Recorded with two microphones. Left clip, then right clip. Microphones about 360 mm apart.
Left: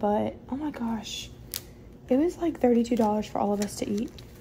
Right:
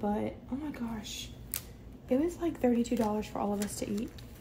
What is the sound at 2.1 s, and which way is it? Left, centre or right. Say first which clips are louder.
A child's voice: left 6 dB; left.